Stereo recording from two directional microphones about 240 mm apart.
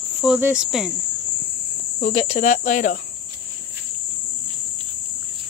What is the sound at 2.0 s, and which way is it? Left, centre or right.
Speech, left.